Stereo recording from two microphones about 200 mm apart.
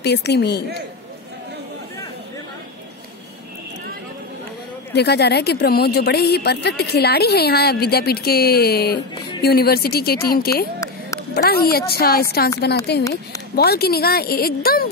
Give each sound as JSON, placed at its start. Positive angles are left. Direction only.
{"t": 0.0, "sound": "a woman's voice", "side_deg": 55}
{"t": 4.9, "sound": "a woman's voice", "side_deg": 55}